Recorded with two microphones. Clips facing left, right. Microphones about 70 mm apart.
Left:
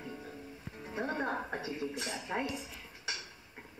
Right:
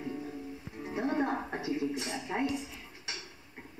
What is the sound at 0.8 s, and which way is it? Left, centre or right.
Music, centre.